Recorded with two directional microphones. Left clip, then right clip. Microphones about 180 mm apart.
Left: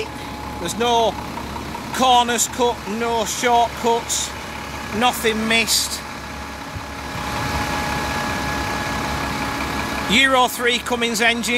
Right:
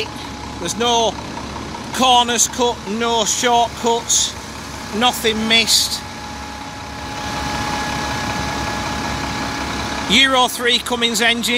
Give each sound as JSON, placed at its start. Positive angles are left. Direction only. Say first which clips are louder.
{"t": 0.7, "sound": "speech", "louder": "right 1 dB", "side_deg": 0}
{"t": 3.0, "sound": "speech", "louder": "right 4 dB", "side_deg": -15}
{"t": 10.0, "sound": "speech", "louder": "right 2 dB", "side_deg": 0}